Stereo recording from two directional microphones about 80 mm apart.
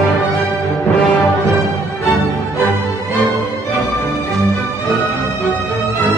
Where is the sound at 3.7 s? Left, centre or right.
Centre.